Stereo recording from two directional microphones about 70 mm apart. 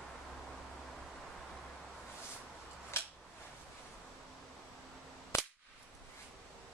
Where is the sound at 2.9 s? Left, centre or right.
Left.